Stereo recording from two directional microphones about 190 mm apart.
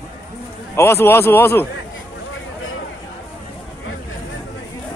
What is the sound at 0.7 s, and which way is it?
Speech, 15° left (ahead or behind).